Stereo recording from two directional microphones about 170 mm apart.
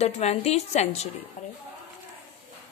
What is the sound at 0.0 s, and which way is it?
A woman's voice, 40° left (ahead or behind).